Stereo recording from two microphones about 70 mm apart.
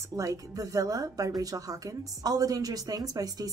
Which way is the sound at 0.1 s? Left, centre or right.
Right.